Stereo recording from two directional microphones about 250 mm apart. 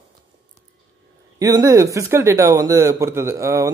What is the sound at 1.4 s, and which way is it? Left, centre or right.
Speech, centre.